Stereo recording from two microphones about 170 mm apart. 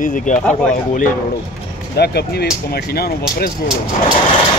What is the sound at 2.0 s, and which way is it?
Speech, 70° left (ahead or behind).